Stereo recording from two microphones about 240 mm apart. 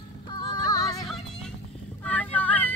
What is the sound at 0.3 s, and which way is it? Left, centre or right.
Music, centre.